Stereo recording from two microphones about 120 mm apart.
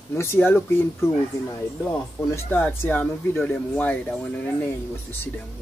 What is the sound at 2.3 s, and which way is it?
Speech, 15° left (ahead or behind).